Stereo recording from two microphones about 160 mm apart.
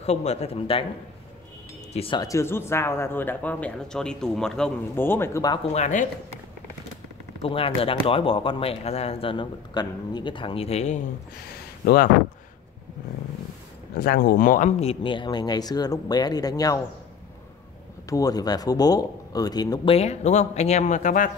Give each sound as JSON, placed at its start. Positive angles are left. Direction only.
{"t": 0.0, "sound": "speech", "side_deg": 45}
{"t": 2.0, "sound": "speech", "side_deg": 35}
{"t": 2.2, "sound": "speech", "side_deg": 15}
{"t": 5.7, "sound": "speech", "side_deg": 50}
{"t": 7.4, "sound": "speech", "side_deg": 35}
{"t": 11.8, "sound": "speech", "side_deg": 65}
{"t": 13.9, "sound": "speech", "side_deg": 70}
{"t": 14.8, "sound": "speech", "side_deg": 35}
{"t": 18.1, "sound": "speech", "side_deg": 25}
{"t": 19.9, "sound": "speech", "side_deg": 40}